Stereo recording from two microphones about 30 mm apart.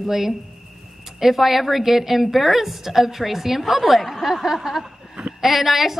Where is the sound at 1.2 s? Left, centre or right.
Centre.